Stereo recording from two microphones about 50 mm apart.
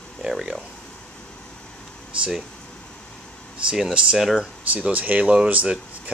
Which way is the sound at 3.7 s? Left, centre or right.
Centre.